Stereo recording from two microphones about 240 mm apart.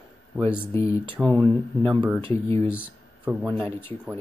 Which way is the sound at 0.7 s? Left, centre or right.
Centre.